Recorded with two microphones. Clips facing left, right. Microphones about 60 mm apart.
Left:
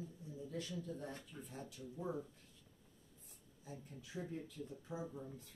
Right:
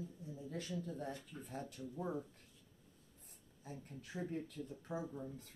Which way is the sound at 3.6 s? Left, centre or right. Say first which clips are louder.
Right 2 dB; right.